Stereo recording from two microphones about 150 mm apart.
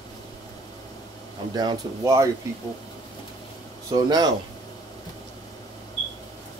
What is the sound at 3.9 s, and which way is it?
Speech, 25° right (ahead or behind).